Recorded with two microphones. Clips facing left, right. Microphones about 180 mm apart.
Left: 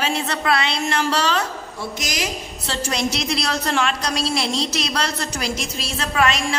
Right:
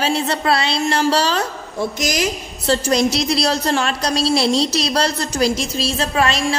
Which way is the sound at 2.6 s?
40° right (ahead or behind).